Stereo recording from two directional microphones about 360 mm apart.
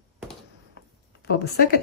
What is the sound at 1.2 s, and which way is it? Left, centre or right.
Speech, left.